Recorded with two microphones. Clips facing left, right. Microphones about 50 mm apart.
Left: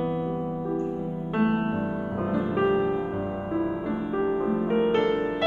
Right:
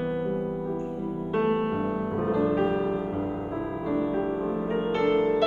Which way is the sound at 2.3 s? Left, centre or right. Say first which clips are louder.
Left 2 dB; centre.